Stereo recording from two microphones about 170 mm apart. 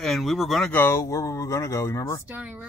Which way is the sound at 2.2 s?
10° right (ahead or behind).